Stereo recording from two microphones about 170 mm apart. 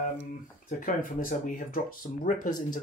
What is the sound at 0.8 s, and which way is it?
Speech, 55° left (ahead or behind).